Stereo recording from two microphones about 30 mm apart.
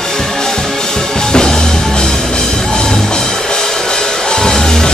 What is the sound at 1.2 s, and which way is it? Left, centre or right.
Music, left.